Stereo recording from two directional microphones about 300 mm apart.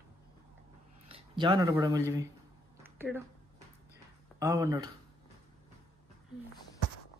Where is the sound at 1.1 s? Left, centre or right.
Centre.